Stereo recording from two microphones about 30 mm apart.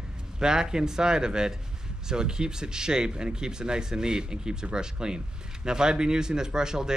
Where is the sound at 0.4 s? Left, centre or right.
Right.